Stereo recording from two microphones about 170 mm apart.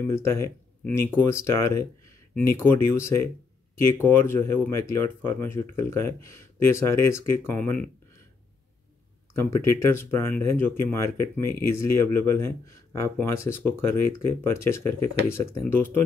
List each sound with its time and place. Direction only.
0.1 s speech: 15° left (ahead or behind)
9.3 s speech: 15° left (ahead or behind)